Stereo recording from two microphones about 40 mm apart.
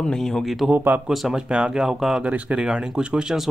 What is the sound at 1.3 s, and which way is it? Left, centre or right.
Speech, centre.